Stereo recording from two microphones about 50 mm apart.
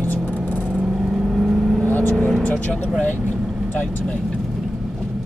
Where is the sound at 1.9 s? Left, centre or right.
Left.